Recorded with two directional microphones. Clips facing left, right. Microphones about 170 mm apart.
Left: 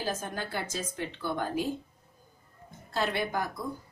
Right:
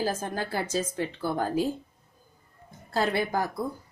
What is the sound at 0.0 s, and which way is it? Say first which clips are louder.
Speech: right 4 dB; 35° right (ahead or behind).